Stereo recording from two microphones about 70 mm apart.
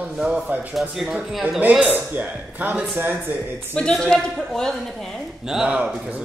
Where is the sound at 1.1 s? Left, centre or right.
Centre.